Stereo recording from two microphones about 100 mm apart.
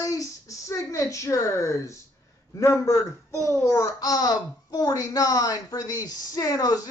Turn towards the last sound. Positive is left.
turn(degrees=35)  # may be behind; listen again after turning